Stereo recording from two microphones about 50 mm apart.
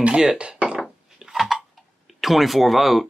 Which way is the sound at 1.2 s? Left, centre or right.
Centre.